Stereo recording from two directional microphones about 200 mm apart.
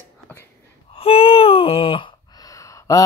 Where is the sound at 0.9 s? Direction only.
25° left (ahead or behind).